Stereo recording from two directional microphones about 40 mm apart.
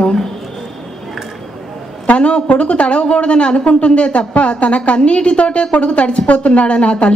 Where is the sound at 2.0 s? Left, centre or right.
Left.